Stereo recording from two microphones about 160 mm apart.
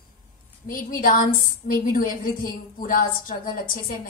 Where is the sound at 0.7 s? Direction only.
60° left (ahead or behind).